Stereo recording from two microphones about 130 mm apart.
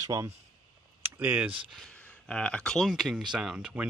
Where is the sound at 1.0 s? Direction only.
10° right (ahead or behind).